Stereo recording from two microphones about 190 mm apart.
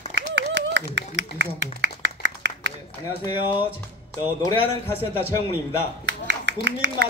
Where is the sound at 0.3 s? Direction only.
70° right (ahead or behind).